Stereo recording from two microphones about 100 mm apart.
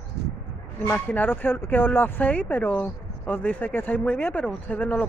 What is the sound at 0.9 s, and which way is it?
Speech, 20° left (ahead or behind).